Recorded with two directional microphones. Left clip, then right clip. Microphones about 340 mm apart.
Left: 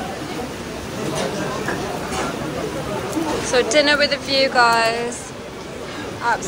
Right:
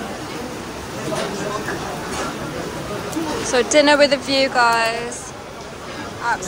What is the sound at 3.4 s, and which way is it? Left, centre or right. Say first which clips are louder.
A woman's voice: right 2 dB; centre.